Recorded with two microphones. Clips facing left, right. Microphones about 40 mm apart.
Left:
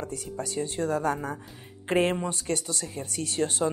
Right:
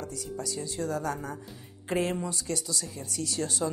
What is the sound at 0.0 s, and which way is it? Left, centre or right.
Speech, left.